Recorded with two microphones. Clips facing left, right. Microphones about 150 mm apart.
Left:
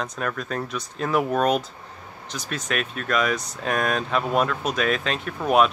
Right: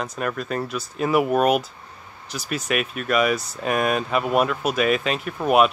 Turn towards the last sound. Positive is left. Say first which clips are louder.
# right 2 dB
turn(degrees=-5)  # may be behind; listen again after turning